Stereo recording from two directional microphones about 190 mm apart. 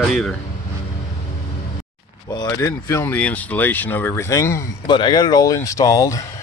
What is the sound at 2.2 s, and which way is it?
Speech, 20° left (ahead or behind).